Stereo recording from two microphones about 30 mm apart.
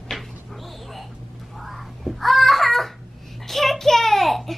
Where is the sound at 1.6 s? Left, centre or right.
Centre.